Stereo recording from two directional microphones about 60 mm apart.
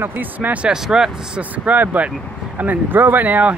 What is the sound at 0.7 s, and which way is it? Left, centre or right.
Speech, centre.